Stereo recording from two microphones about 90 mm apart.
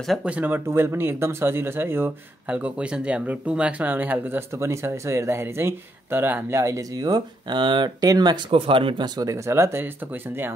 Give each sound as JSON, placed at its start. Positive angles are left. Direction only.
{"t": 0.2, "sound": "speech", "side_deg": -15}
{"t": 0.7, "sound": "speech", "side_deg": -25}
{"t": 2.5, "sound": "speech", "side_deg": -15}
{"t": 4.6, "sound": "speech", "side_deg": -30}
{"t": 6.6, "sound": "speech", "side_deg": -35}
{"t": 7.1, "sound": "speech", "side_deg": -55}
{"t": 8.0, "sound": "speech", "side_deg": -45}
{"t": 8.5, "sound": "speech", "side_deg": -85}
{"t": 9.2, "sound": "speech", "side_deg": -35}